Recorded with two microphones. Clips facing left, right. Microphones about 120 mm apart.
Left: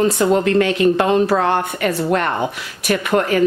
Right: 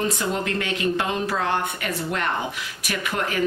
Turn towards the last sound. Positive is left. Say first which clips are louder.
# left 9 dB
turn(degrees=55)  # may be behind; listen again after turning